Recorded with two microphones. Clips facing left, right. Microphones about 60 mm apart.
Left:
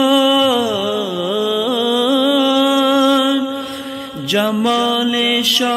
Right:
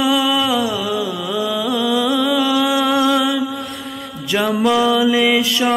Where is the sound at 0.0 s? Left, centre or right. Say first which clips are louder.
Left 4 dB; centre.